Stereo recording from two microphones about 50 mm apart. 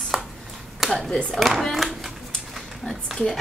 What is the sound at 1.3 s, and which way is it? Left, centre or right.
A woman's voice, centre.